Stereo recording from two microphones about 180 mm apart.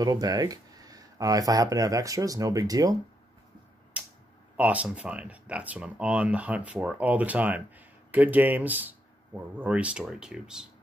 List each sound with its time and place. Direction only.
0.0 s speech: 20° right (ahead or behind)
3.9 s a sound: 5° right (ahead or behind)
4.6 s speech: 5° right (ahead or behind)